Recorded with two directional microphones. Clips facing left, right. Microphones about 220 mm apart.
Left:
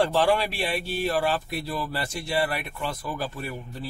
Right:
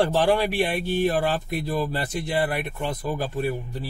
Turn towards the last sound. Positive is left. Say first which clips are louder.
# right 8 dB
turn(degrees=-20)  # may be behind; listen again after turning